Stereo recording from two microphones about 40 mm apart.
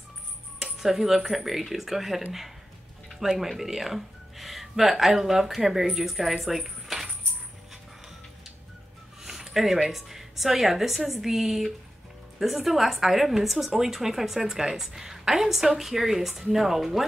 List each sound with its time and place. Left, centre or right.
0.6 s speech: centre
9.2 s a woman's voice: centre